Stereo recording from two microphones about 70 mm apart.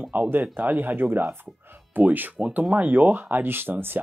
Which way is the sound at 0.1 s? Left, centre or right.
Right.